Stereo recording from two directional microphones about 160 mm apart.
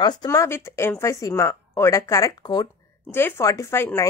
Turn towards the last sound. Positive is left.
turn(degrees=15)  # may be behind; listen again after turning